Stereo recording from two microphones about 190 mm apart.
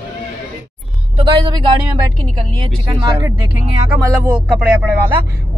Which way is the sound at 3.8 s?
5° right (ahead or behind).